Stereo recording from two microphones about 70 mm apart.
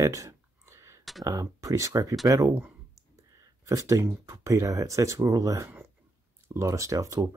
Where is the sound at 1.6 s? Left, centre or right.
Right.